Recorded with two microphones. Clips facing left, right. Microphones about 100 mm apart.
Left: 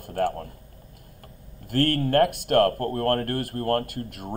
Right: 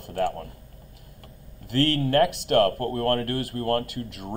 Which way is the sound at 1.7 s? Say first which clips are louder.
Even; 50° left (ahead or behind).